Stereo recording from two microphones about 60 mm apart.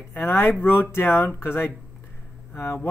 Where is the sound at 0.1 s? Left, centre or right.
Left.